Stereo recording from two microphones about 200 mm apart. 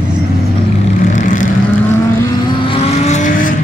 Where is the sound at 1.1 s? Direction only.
40° left (ahead or behind).